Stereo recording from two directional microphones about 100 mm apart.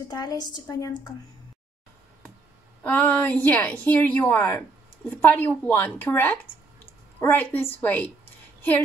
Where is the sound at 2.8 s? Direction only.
20° left (ahead or behind).